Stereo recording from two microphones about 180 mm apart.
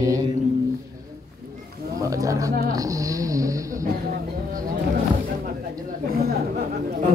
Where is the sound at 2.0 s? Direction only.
20° right (ahead or behind).